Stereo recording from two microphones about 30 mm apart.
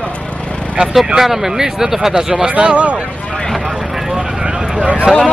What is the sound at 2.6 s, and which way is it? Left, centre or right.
Speech, right.